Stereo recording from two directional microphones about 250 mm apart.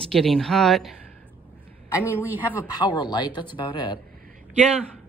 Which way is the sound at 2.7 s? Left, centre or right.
Centre.